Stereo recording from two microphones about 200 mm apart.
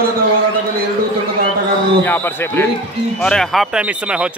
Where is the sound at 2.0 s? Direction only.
10° left (ahead or behind).